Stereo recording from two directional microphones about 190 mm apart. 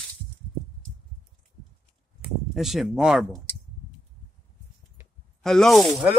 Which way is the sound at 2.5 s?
Centre (ahead or behind).